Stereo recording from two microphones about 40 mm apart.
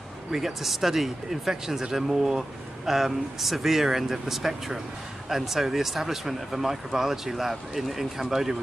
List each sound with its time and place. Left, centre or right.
0.3 s speech: centre